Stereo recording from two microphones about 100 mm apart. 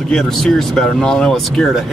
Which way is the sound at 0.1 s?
5° left (ahead or behind).